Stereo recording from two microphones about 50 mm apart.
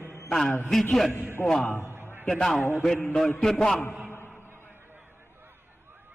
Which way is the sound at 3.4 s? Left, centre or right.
Centre.